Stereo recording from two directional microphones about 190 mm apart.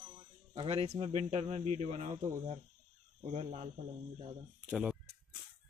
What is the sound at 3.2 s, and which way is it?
Speech, 35° right (ahead or behind).